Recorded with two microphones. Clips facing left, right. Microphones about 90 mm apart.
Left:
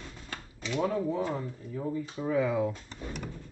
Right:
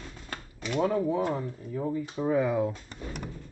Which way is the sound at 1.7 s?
35° right (ahead or behind).